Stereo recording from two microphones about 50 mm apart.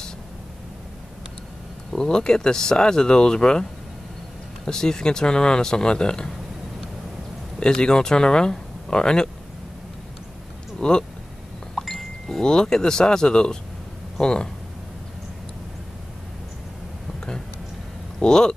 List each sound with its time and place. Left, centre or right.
1.9 s speech: centre
4.6 s speech: centre
7.6 s speech: centre
10.8 s speech: centre
11.7 s a sound: centre
12.4 s speech: centre
18.2 s speech: centre